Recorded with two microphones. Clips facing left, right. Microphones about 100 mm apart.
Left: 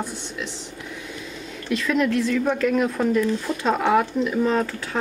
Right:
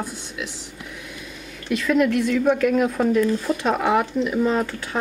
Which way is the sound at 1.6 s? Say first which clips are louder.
Right 2 dB; 10° right (ahead or behind).